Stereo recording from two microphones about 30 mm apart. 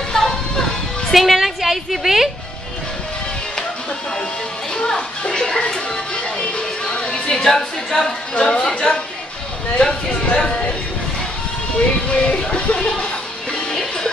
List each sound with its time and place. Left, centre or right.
0.1 s music: left
1.1 s a woman's voice: centre
4.9 s music: left
7.3 s a woman's voice: centre
8.4 s speech: left
8.9 s a woman's voice: left
9.8 s speech: left
12.1 s speech: left
12.7 s music: left
13.7 s music: centre